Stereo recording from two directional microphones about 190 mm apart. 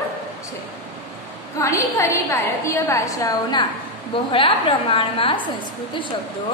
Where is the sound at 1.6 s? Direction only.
15° left (ahead or behind).